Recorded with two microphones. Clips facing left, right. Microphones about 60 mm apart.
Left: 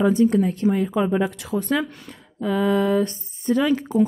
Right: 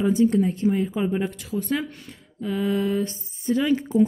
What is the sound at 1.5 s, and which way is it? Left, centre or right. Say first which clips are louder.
Speech: left 3 dB; left.